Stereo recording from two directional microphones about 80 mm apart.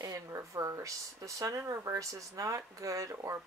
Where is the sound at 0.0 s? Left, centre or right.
Right.